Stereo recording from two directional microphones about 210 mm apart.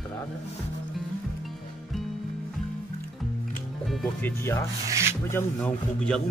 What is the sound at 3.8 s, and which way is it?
Speech, centre (ahead or behind).